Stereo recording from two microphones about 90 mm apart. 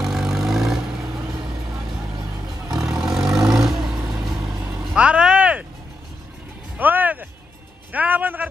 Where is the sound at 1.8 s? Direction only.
40° right (ahead or behind).